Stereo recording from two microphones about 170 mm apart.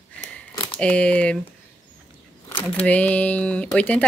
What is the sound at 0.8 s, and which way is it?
Speech, 5° left (ahead or behind).